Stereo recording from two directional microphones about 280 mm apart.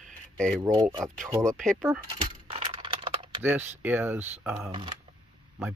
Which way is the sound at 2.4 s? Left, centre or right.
Centre.